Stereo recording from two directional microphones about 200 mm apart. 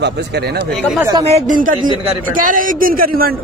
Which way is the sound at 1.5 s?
40° right (ahead or behind).